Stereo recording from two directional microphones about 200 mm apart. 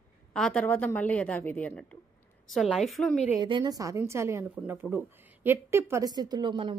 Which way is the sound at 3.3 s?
20° right (ahead or behind).